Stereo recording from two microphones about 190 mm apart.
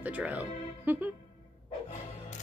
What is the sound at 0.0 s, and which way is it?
Speech, 10° right (ahead or behind).